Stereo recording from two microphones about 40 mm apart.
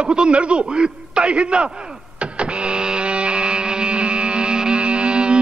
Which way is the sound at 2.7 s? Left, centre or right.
Right.